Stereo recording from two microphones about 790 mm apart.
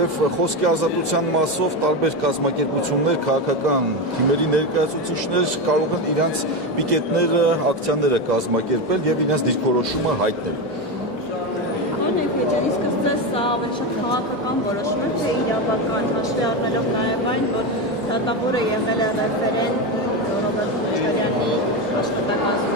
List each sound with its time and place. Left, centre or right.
0.6 s a man's voice: right
6.9 s a man's voice: right
9.3 s a man's voice: right